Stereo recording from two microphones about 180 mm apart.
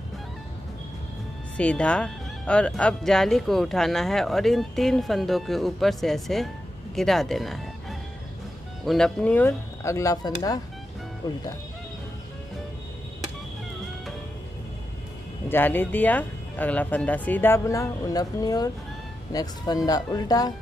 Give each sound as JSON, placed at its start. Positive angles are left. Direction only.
{"t": 1.6, "sound": "speech", "side_deg": 5}
{"t": 15.4, "sound": "speech", "side_deg": 10}